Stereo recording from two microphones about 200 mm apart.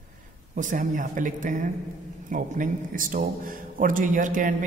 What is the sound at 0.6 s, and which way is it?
A man's voice, 40° right (ahead or behind).